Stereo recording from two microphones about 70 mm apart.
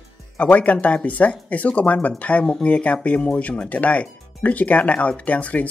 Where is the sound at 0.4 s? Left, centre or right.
Left.